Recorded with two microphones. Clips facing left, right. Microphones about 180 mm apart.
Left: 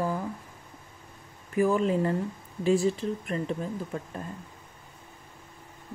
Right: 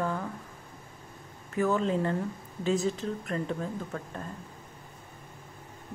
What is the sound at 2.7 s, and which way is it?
Speech, 30° left (ahead or behind).